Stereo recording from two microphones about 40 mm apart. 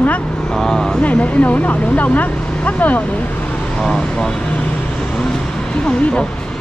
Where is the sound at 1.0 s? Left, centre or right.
Left.